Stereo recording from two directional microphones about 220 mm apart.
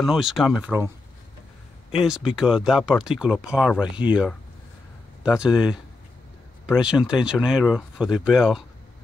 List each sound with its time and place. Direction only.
0.0 s speech: centre (ahead or behind)
1.9 s speech: 5° right (ahead or behind)